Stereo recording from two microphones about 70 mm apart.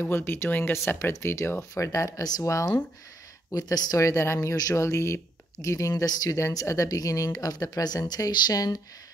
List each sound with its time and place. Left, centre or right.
0.0 s speech: left
0.5 s speech: left
0.7 s speech: left
1.8 s speech: left
2.4 s speech: left